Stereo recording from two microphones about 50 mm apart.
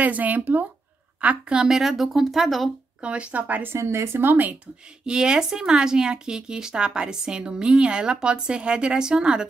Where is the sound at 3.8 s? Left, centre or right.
Right.